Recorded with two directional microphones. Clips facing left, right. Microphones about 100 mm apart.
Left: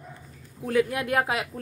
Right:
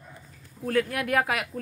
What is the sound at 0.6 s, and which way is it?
Speech, 15° left (ahead or behind).